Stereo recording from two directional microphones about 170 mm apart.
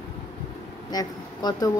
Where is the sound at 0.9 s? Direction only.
20° left (ahead or behind).